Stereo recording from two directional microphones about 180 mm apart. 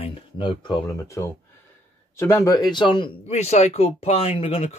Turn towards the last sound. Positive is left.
turn(degrees=30)  # may be behind; listen again after turning